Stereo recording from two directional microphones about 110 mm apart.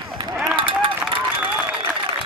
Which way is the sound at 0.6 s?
55° right (ahead or behind).